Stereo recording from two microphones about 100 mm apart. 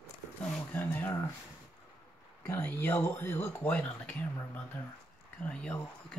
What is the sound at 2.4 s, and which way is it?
Speech, 20° left (ahead or behind).